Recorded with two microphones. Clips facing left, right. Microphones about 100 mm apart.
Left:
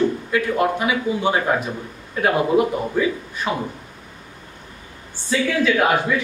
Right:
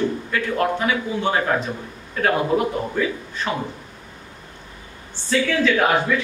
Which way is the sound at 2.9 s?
10° left (ahead or behind).